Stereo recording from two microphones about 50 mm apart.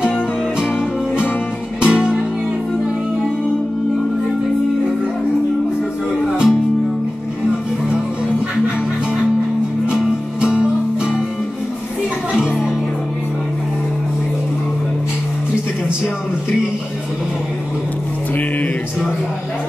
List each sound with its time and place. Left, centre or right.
1.8 s music: centre
6.2 s music: centre
9.8 s music: centre